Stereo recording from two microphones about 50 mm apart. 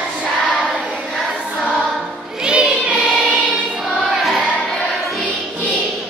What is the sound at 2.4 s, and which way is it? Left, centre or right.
Choir, centre.